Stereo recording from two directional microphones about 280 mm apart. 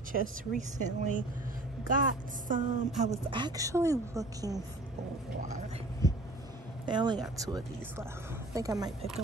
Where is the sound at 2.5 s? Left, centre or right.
Right.